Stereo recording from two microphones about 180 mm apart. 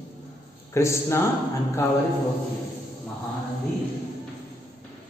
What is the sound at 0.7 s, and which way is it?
Speech, 15° left (ahead or behind).